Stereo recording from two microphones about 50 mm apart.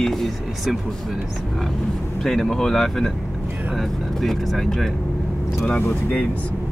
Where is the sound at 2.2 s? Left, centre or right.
Centre.